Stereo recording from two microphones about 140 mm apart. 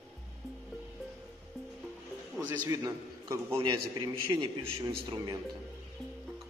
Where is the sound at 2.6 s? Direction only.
25° right (ahead or behind).